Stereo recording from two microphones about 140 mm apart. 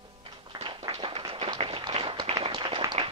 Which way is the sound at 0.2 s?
35° right (ahead or behind).